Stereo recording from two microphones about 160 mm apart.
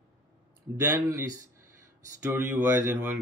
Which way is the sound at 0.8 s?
15° right (ahead or behind).